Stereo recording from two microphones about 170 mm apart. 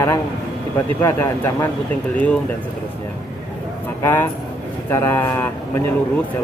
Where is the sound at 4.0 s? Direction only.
15° left (ahead or behind).